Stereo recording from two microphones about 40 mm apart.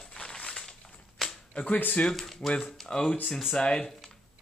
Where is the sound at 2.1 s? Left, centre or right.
Centre.